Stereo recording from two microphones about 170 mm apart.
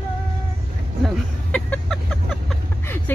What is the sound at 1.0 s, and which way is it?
Vehicle, 5° left (ahead or behind).